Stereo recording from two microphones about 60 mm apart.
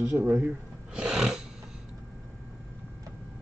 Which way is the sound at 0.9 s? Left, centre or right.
Centre.